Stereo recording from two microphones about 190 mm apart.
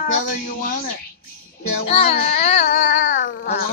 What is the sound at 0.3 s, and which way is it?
Speech, 50° left (ahead or behind).